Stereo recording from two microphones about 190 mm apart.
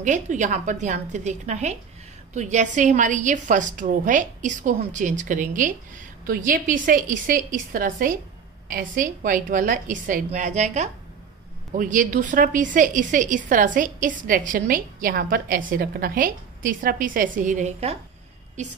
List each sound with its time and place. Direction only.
0.0 s a woman's voice: 40° right (ahead or behind)